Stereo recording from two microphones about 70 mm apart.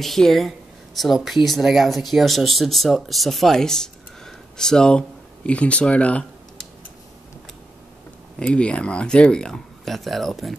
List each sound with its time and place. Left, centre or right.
0.0 s speech: centre
8.5 s speech: centre